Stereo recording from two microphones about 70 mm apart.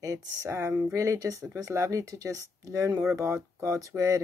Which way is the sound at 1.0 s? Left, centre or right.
Right.